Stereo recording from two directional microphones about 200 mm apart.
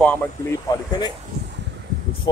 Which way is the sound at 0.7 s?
20° left (ahead or behind).